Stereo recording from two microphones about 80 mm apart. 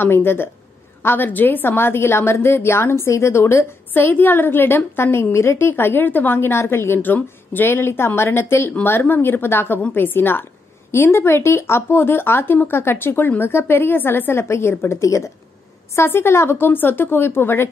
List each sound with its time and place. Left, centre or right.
0.0 s a woman's voice: left
15.9 s a woman's voice: left